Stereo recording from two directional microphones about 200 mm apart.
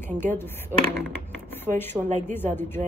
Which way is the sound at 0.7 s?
10° right (ahead or behind).